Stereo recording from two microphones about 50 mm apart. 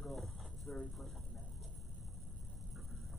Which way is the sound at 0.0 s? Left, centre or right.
Centre.